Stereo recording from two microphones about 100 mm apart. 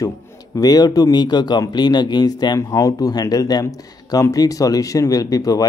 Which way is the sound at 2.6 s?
35° left (ahead or behind).